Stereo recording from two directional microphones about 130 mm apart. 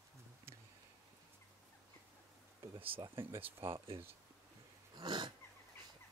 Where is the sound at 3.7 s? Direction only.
45° right (ahead or behind).